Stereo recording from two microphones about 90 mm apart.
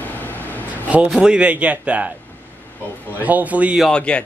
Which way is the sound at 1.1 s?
10° right (ahead or behind).